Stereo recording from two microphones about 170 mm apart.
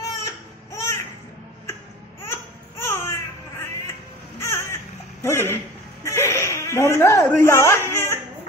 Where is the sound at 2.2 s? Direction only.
15° left (ahead or behind).